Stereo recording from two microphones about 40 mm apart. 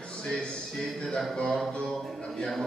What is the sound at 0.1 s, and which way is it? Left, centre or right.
Speech, centre.